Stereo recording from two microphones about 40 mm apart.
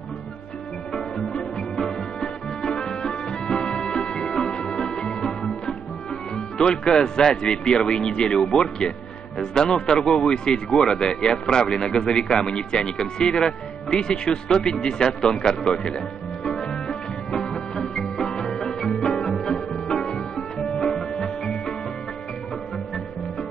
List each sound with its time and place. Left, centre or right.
0.9 s music: centre
7.2 s speech: centre
16.4 s music: centre